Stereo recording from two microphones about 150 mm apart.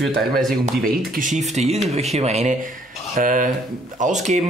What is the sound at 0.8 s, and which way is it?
Speech, 65° right (ahead or behind).